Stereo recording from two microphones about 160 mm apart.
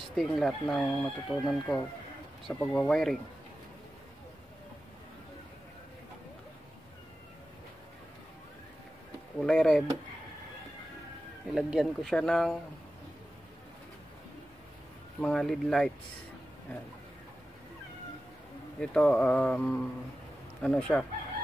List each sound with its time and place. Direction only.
0.1 s speech: centre (ahead or behind)
9.4 s speech: 5° left (ahead or behind)
11.5 s speech: centre (ahead or behind)
15.1 s speech: 5° left (ahead or behind)
18.8 s speech: 5° left (ahead or behind)